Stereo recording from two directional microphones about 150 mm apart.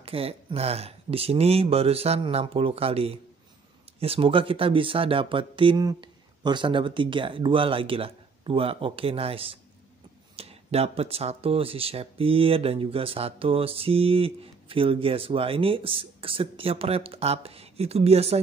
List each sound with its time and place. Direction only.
0.0 s speech: 40° right (ahead or behind)